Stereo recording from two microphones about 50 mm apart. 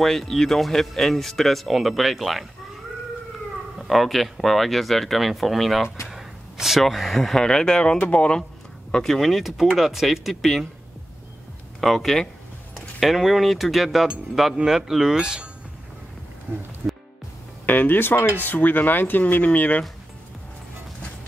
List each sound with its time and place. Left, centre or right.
0.0 s speech: centre
3.7 s speech: centre; by 8.4 s left
8.9 s speech: centre
11.8 s speech: centre
16.8 s music: right
17.6 s speech: left